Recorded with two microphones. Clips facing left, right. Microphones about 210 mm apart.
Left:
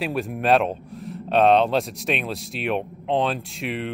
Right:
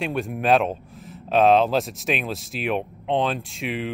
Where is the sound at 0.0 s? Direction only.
Centre (ahead or behind).